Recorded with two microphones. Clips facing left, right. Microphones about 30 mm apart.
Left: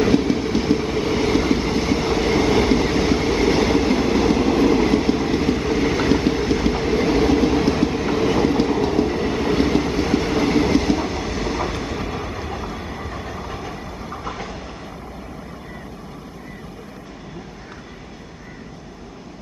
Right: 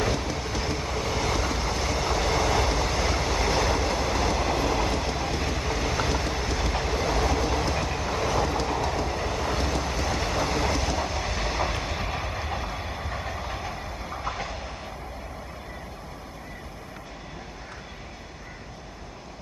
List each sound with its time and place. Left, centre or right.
0.0 s train: left
11.0 s train: centre